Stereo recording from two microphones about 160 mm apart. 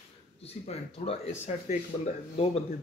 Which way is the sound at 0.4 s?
40° left (ahead or behind).